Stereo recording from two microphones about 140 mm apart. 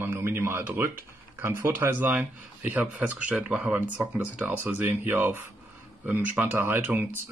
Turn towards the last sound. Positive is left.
turn(degrees=-15)  # may be behind; listen again after turning